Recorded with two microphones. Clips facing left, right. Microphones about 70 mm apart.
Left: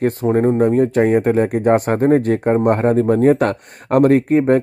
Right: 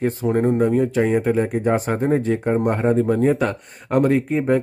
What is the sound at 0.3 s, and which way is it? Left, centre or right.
Speech, left.